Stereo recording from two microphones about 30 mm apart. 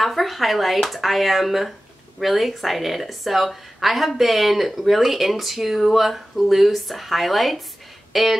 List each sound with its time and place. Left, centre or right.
0.0 s a woman's voice: centre